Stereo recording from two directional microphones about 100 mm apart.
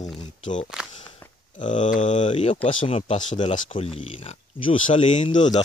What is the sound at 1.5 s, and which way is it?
Speech, 55° left (ahead or behind).